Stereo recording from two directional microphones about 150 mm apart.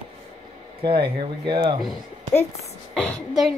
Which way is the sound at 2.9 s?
Centre (ahead or behind).